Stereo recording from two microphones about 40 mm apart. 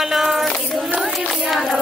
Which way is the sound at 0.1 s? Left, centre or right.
Centre.